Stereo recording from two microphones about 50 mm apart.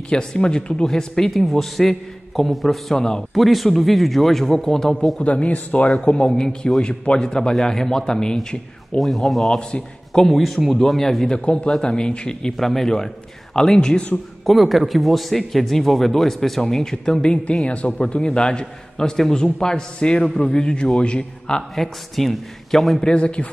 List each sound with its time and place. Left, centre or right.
0.1 s a man's voice: centre
3.3 s a man's voice: centre
5.2 s a man's voice: left
9.0 s a man's voice: centre
9.6 s a man's voice: centre
12.5 s a man's voice: centre
14.4 s a man's voice: centre
21.7 s a man's voice: centre
23.0 s speech: left